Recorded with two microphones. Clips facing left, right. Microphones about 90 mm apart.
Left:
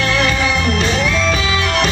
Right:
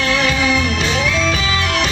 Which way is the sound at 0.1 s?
10° right (ahead or behind).